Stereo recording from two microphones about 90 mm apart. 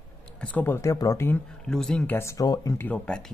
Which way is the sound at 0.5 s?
20° left (ahead or behind).